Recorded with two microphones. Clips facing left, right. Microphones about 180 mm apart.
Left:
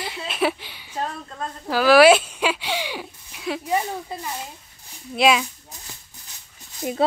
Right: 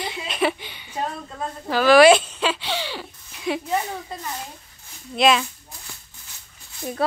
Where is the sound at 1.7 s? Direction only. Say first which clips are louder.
Even; 5° left (ahead or behind).